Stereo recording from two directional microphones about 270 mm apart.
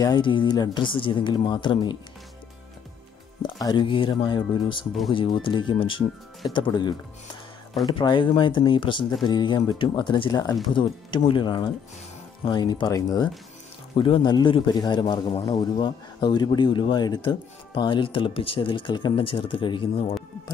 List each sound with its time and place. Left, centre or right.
0.0 s a man's voice: centre
3.4 s a man's voice: centre
18.3 s speech: left
18.6 s a man's voice: centre